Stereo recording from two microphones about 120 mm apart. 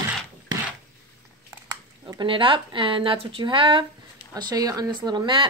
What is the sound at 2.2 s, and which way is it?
Speech, 45° right (ahead or behind).